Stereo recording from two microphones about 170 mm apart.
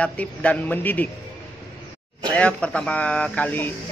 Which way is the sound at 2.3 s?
5° left (ahead or behind).